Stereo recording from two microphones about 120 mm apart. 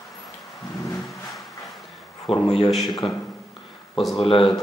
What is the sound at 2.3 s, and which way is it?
Speech, 55° left (ahead or behind).